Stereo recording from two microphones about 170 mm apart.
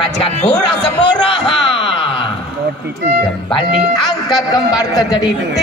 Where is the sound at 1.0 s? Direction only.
30° left (ahead or behind).